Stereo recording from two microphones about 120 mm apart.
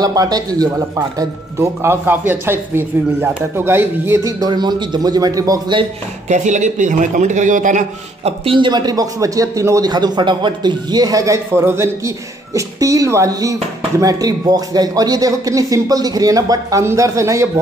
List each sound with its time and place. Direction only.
0.0 s a man's voice: 30° right (ahead or behind)
4.5 s a man's voice: 40° right (ahead or behind)
6.2 s a man's voice: 85° right; by 8.5 s 60° right (ahead or behind)
8.5 s a man's voice: 40° right (ahead or behind)